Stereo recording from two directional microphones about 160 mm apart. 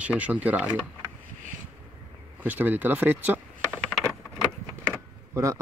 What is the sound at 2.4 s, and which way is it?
Speech, 10° right (ahead or behind).